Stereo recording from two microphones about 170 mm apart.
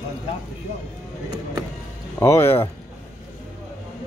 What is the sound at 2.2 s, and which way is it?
Speech, 15° left (ahead or behind).